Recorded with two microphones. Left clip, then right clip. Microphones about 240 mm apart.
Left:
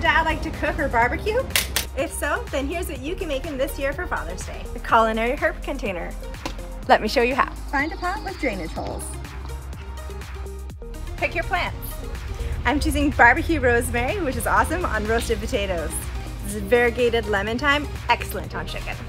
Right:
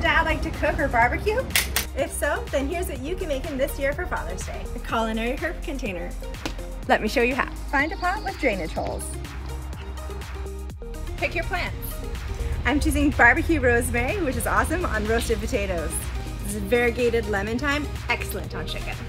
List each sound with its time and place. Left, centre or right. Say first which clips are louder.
0.0 s speech: left 2 dB; centre
5.0 s a woman's voice: left 6 dB; centre
11.1 s speech: left 3 dB; centre
12.8 s speech: left 2 dB; centre